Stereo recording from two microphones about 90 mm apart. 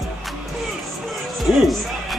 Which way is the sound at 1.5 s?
Centre (ahead or behind).